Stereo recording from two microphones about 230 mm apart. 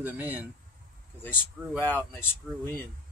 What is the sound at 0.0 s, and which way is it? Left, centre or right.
Speech, centre.